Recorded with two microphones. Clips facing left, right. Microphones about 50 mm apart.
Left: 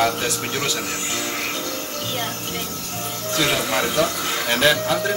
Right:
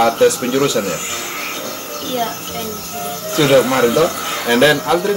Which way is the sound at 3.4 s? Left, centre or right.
Centre.